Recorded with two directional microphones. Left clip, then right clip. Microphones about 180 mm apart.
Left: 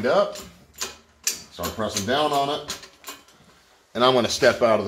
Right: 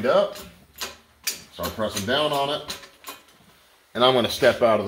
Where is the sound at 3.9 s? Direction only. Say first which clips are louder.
Even; 20° right (ahead or behind).